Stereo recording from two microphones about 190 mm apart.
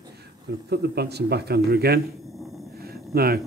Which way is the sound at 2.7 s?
55° right (ahead or behind).